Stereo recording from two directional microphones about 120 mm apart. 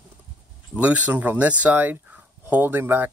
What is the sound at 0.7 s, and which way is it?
Speech, 15° right (ahead or behind).